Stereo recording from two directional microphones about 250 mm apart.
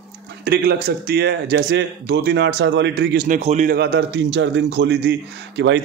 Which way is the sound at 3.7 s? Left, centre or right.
Right.